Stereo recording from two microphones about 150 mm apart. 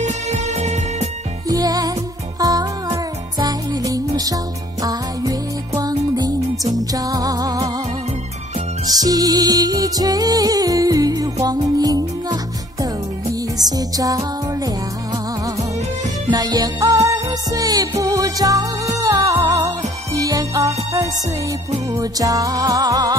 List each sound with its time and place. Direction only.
0.0 s music: 50° right (ahead or behind)
1.5 s music: 25° right (ahead or behind)
5.8 s music: 25° right (ahead or behind)
8.8 s music: 25° right (ahead or behind)
13.6 s music: 25° right (ahead or behind)
16.3 s music: 25° right (ahead or behind)
22.2 s music: 25° right (ahead or behind)